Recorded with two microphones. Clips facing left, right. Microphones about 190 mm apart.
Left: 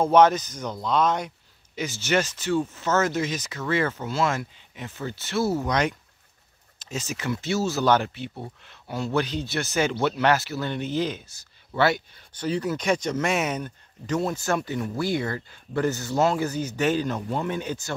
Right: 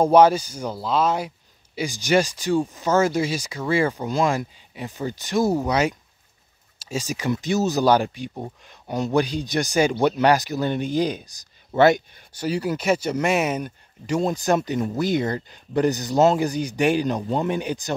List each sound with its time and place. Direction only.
0.1 s speech: 10° right (ahead or behind)